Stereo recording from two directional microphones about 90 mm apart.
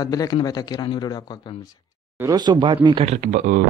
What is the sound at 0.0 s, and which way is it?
Speech, 45° left (ahead or behind).